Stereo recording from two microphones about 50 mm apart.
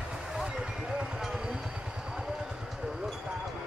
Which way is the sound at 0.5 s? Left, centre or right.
Centre.